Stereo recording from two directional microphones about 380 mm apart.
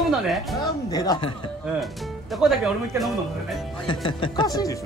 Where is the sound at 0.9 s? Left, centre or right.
Centre.